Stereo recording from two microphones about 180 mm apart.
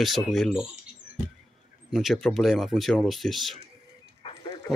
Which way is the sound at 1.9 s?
Centre (ahead or behind).